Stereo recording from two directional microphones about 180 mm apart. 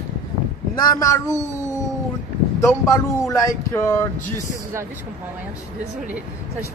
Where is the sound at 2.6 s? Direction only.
15° left (ahead or behind).